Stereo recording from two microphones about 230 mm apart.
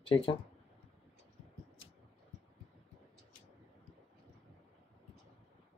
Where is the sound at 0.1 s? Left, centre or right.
Left.